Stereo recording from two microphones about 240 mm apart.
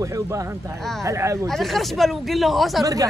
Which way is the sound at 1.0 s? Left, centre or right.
Centre.